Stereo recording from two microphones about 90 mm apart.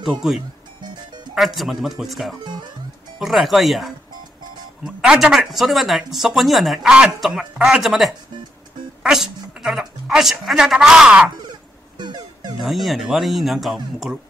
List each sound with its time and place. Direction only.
0.0 s speech: centre (ahead or behind)
0.8 s music: 55° right (ahead or behind)
1.3 s speech: centre (ahead or behind)
9.0 s a sound: 5° right (ahead or behind)
10.4 s speech: 5° right (ahead or behind)
12.0 s music: 55° right (ahead or behind)
12.5 s speech: centre (ahead or behind)